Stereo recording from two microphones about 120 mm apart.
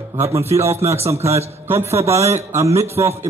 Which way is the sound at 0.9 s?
60° right (ahead or behind).